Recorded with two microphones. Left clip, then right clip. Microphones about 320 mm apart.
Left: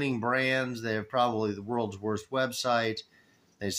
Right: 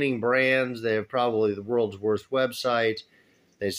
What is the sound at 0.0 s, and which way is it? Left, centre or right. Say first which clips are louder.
Speech: right 5 dB; centre.